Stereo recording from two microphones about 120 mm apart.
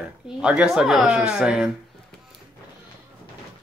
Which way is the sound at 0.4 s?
10° right (ahead or behind).